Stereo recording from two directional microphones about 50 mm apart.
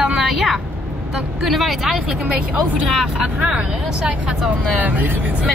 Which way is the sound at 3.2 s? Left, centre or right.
Centre.